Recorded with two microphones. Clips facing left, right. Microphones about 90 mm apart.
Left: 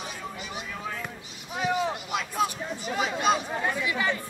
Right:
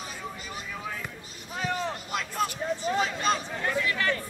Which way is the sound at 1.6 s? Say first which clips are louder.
Left 4 dB; 5° left (ahead or behind).